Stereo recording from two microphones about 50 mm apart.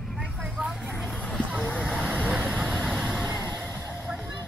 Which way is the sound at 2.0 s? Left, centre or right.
Right.